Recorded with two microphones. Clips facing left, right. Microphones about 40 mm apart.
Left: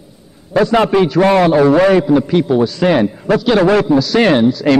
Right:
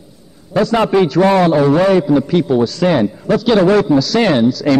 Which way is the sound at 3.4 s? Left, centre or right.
Centre.